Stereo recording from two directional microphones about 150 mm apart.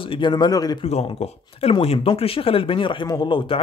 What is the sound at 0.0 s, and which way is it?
Speech, 35° left (ahead or behind).